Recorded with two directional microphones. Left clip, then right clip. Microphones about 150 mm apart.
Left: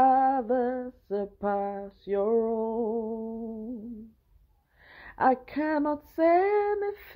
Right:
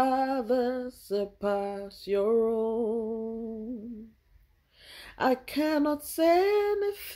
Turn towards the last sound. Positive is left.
turn(degrees=-15)  # may be behind; listen again after turning